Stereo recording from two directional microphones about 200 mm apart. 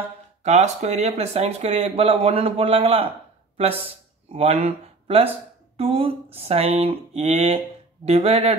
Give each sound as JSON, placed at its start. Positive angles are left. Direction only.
{"t": 0.4, "sound": "speech", "side_deg": -35}